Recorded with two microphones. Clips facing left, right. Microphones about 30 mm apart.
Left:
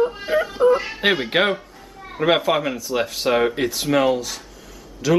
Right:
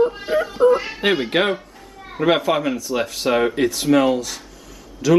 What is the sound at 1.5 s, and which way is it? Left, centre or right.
A man's voice, centre.